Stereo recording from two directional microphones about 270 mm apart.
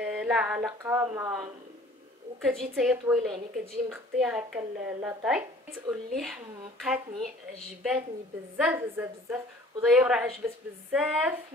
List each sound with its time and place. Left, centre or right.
0.0 s a woman's voice: centre